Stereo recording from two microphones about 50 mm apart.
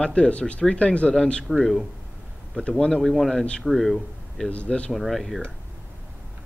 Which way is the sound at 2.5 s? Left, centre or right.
Centre.